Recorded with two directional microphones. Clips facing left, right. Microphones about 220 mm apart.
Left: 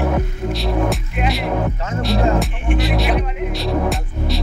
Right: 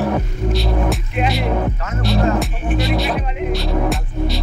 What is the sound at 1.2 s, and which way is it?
Music, 25° right (ahead or behind).